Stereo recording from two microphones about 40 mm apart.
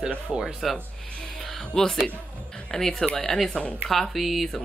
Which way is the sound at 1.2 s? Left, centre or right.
Centre.